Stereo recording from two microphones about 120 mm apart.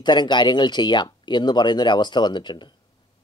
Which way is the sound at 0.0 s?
40° left (ahead or behind).